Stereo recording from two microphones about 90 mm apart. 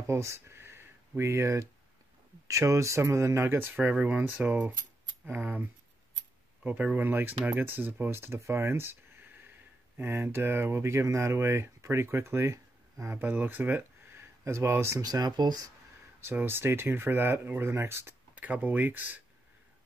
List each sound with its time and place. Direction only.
0.0 s speech: 35° right (ahead or behind)
13.2 s speech: 20° right (ahead or behind)
15.0 s speech: 50° right (ahead or behind)
16.2 s speech: 25° right (ahead or behind)